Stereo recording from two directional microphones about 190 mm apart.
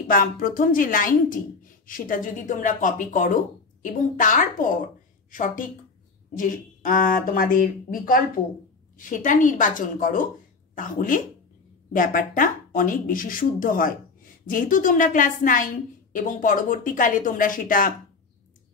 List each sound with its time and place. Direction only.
0.1 s a woman's voice: 45° left (ahead or behind)